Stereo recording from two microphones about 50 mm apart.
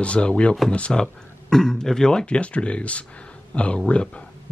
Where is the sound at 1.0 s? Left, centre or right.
Centre.